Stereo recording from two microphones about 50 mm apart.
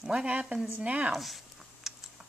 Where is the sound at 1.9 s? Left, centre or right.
Centre.